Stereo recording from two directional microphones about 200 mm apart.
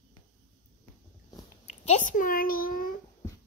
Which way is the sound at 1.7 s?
35° left (ahead or behind).